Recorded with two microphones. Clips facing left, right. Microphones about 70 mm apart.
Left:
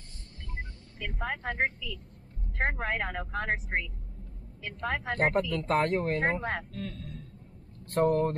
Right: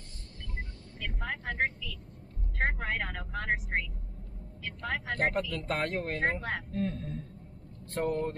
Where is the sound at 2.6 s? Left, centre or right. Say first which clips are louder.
Left 2 dB; centre.